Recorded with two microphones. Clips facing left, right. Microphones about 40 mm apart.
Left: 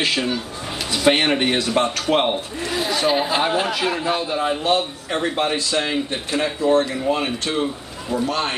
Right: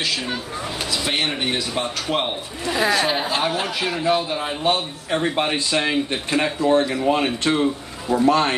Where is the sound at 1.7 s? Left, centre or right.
Left.